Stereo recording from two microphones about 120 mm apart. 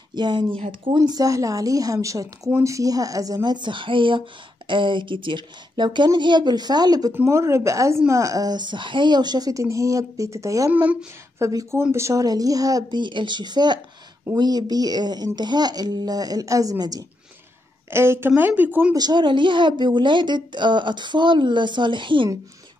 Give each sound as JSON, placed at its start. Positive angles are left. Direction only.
{"t": 0.1, "sound": "a woman's voice", "side_deg": -40}
{"t": 7.2, "sound": "a woman's voice", "side_deg": -25}
{"t": 10.7, "sound": "speech", "side_deg": -10}
{"t": 11.3, "sound": "a woman's voice", "side_deg": -25}
{"t": 17.8, "sound": "speech", "side_deg": -20}
{"t": 18.9, "sound": "a woman's voice", "side_deg": -35}